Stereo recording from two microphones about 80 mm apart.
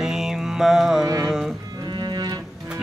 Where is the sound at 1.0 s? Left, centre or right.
Right.